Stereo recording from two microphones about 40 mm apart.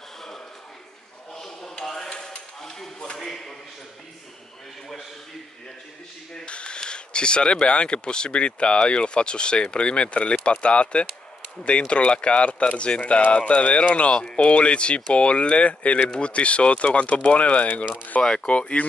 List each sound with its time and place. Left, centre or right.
1.3 s dishes: centre
2.6 s a sound: centre
6.4 s speech: left
18.2 s speech: centre
18.5 s speech: left